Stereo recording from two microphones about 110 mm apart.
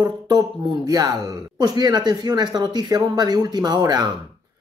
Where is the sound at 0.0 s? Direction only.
35° right (ahead or behind).